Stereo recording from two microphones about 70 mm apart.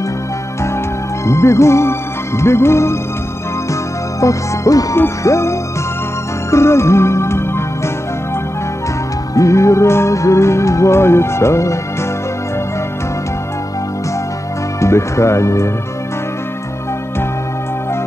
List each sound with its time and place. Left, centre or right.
1.2 s music: left
4.2 s music: left
4.9 s music: left
9.3 s music: left
14.8 s speech: left